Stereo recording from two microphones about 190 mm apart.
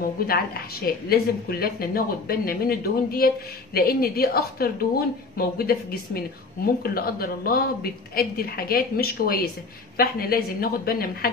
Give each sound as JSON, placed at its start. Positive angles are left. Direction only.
{"t": 0.3, "sound": "a woman's voice", "side_deg": 50}